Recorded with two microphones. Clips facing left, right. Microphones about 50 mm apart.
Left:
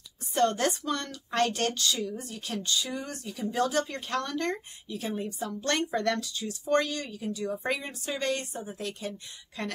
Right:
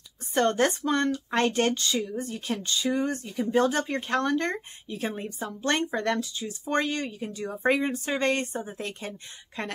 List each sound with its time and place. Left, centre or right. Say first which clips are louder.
0.3 s speech: right 2 dB; right
5.6 s speech: right 2 dB; right